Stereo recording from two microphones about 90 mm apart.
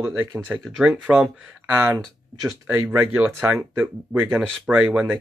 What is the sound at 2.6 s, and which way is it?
Speech, 25° right (ahead or behind).